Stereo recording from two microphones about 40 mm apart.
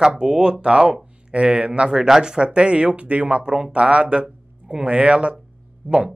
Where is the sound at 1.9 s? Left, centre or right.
Centre.